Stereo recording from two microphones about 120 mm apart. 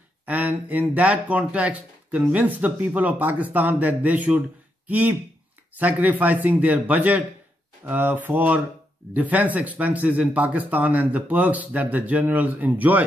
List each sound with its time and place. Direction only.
0.2 s speech: 15° right (ahead or behind)